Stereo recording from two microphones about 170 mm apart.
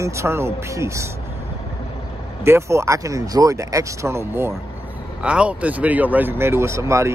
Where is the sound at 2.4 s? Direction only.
15° right (ahead or behind).